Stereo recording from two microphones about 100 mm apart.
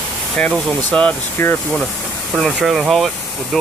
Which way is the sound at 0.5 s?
10° left (ahead or behind).